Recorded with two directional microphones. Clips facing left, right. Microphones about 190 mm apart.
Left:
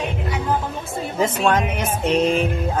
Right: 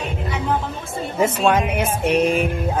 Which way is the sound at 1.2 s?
10° right (ahead or behind).